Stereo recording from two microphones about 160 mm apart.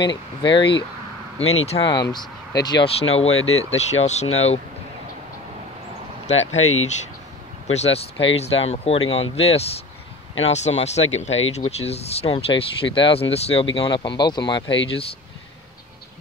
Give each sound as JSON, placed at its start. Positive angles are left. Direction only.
{"t": 0.0, "sound": "speech", "side_deg": 30}
{"t": 1.4, "sound": "speech", "side_deg": 40}
{"t": 1.9, "sound": "speech", "side_deg": 25}
{"t": 3.0, "sound": "speech", "side_deg": 40}
{"t": 6.2, "sound": "speech", "side_deg": 45}